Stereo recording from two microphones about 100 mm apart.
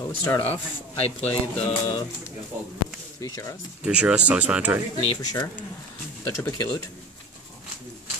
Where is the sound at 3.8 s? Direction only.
10° right (ahead or behind).